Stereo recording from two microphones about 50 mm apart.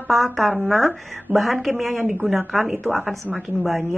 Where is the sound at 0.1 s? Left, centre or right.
Centre.